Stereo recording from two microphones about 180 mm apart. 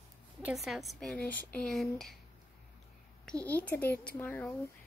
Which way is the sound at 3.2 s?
5° left (ahead or behind).